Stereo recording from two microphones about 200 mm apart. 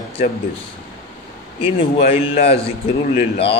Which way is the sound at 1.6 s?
30° left (ahead or behind).